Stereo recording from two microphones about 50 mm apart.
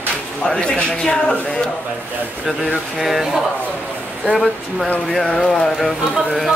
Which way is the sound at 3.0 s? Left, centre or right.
Centre.